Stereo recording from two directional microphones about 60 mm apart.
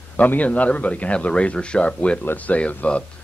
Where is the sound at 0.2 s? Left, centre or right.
Left.